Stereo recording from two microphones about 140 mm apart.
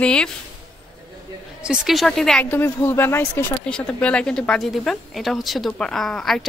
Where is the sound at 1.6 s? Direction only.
5° right (ahead or behind).